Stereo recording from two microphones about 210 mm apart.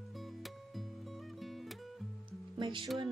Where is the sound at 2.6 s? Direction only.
25° right (ahead or behind).